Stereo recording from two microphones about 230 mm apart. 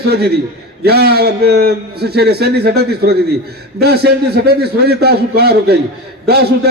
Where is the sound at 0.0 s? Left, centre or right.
Right.